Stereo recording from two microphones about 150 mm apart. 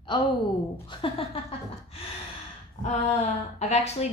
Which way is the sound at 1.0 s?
40° left (ahead or behind).